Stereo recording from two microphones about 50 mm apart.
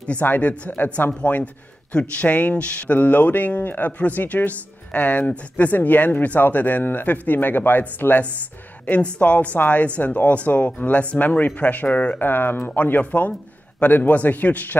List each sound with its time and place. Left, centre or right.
0.0 s speech: left
8.8 s speech: left
12.2 s speech: left